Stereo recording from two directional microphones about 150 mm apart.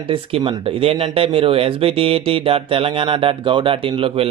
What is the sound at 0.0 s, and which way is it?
Speech, 35° right (ahead or behind).